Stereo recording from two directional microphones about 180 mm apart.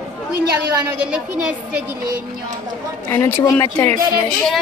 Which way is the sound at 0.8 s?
5° right (ahead or behind).